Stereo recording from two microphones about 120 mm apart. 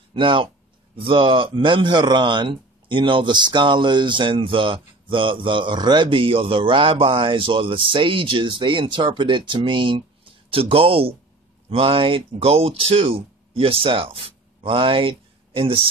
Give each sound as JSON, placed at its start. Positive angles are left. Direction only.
{"t": 0.1, "sound": "a man's voice", "side_deg": -45}